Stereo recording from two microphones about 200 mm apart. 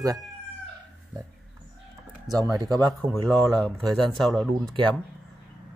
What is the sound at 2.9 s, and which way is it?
Speech, centre (ahead or behind).